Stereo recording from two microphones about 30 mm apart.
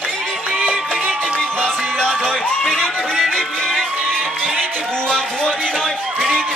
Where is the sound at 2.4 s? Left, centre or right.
Left.